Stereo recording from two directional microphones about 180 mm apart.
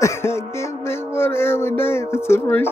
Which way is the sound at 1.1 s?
15° left (ahead or behind).